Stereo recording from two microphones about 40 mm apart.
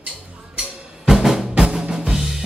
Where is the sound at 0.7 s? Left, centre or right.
Right.